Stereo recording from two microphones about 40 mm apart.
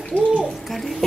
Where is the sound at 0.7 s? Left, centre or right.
Centre.